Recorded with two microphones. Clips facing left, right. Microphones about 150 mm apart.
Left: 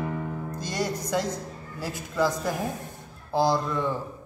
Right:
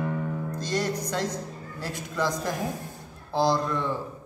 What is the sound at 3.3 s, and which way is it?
Speech, 15° left (ahead or behind).